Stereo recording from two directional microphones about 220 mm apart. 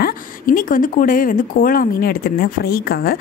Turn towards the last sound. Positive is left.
turn(degrees=45)  # may be behind; listen again after turning